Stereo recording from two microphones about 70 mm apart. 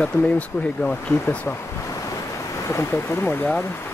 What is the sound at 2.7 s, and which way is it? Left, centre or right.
Speech, left.